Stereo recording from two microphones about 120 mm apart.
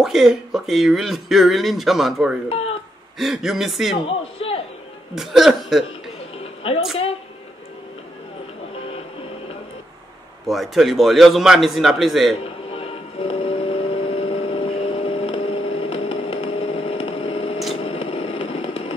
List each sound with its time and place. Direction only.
0.0 s speech: 5° right (ahead or behind)
4.4 s music: 50° left (ahead or behind)
5.1 s speech: centre (ahead or behind)
6.6 s a woman's voice: 50° left (ahead or behind)
10.4 s speech: centre (ahead or behind)
12.7 s vehicle: 55° left (ahead or behind)
17.7 s a sound: 50° left (ahead or behind)